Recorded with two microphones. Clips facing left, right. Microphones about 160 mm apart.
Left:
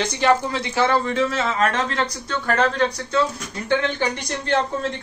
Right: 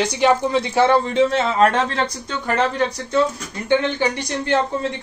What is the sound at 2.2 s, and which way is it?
Speech, 15° right (ahead or behind).